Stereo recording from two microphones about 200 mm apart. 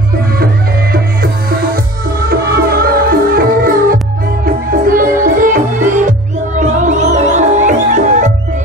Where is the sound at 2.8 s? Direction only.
45° right (ahead or behind).